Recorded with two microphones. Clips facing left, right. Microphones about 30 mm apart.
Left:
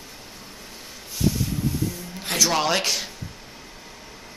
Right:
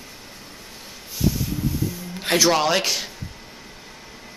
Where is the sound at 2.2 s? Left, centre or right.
Right.